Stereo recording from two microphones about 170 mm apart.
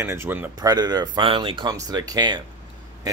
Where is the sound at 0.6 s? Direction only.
25° right (ahead or behind).